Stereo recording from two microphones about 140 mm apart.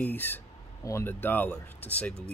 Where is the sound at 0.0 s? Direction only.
15° left (ahead or behind).